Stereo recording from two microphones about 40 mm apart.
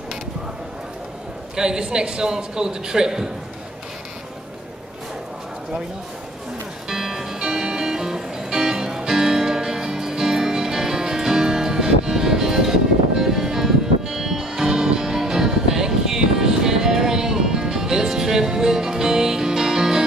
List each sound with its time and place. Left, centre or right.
1.6 s a man's voice: centre
6.9 s music: centre